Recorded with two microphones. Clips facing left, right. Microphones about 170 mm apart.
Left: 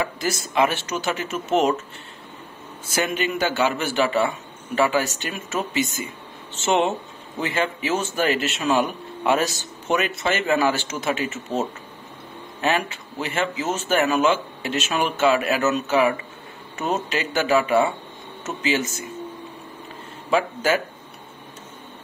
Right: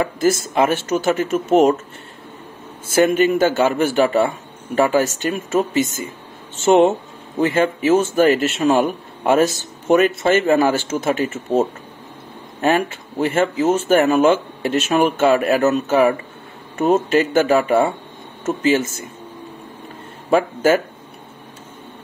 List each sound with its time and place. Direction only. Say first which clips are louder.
0.0 s speech: right 8 dB; 50° right (ahead or behind)
2.9 s speech: right 10 dB; 50° right (ahead or behind)
20.2 s speech: right 6 dB; 50° right (ahead or behind)